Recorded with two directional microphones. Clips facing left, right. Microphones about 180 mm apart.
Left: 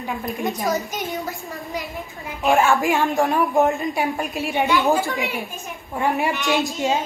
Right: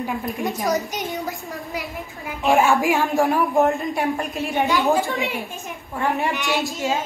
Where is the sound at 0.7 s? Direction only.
20° right (ahead or behind).